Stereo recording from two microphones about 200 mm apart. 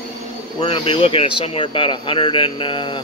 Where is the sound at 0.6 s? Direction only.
25° left (ahead or behind).